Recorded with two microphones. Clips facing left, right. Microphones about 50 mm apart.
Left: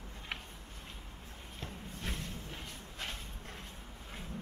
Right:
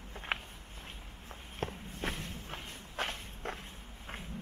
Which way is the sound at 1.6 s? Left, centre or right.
Right.